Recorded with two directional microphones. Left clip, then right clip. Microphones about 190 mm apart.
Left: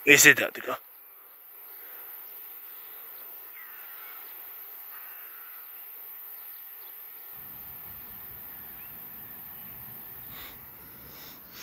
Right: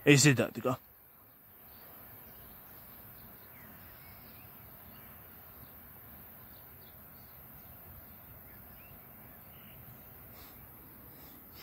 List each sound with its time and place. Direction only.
0.0 s speech: centre (ahead or behind)